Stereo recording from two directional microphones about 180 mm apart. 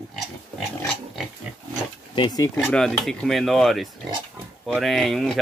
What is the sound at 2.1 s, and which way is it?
Speech, 20° left (ahead or behind).